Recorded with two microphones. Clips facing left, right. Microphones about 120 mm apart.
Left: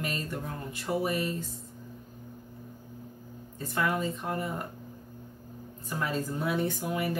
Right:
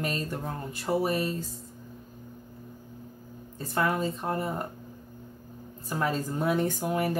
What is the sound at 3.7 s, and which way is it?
Speech, 35° right (ahead or behind).